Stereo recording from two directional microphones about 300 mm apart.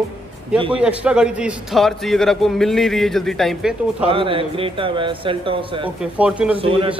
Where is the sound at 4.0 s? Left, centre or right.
Centre.